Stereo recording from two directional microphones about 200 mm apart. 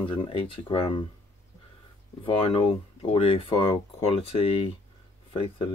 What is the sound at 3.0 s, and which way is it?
Speech, 30° left (ahead or behind).